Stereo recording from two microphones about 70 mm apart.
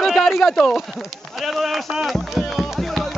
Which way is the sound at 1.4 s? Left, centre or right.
Centre.